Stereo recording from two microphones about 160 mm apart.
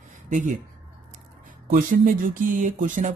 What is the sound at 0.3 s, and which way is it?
Speech, 55° right (ahead or behind).